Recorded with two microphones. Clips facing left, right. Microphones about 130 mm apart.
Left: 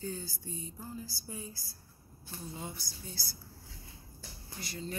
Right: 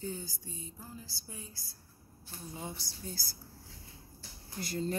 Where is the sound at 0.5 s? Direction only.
Centre (ahead or behind).